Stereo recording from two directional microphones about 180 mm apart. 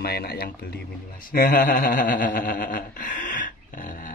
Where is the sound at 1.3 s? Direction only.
50° left (ahead or behind).